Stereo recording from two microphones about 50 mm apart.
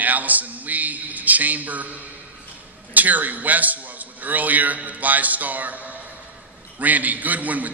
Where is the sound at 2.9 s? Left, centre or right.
Right.